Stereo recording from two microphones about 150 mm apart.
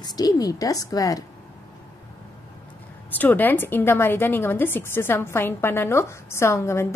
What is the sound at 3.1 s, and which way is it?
A woman's voice, 10° left (ahead or behind).